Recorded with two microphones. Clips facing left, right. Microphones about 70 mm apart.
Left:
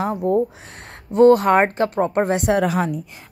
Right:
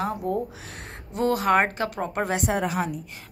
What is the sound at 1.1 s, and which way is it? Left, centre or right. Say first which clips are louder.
Speech: left 9 dB; left.